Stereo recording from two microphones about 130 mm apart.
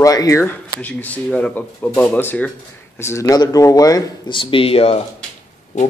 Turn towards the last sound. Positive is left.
turn(degrees=65)  # may be behind; listen again after turning